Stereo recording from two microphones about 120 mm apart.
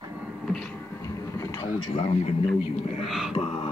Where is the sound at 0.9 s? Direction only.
25° left (ahead or behind).